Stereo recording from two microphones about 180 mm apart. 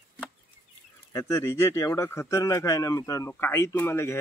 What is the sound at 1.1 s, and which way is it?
Speech, 15° left (ahead or behind).